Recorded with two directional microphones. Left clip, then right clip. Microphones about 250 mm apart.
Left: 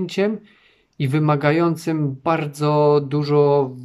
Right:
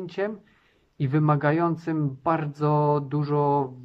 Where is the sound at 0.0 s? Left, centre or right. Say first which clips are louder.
Left 8 dB; centre.